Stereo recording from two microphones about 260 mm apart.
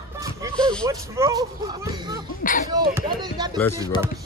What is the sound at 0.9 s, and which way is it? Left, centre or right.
Speech, centre.